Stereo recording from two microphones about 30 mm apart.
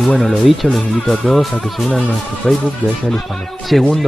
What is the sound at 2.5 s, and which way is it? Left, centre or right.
Speech, centre.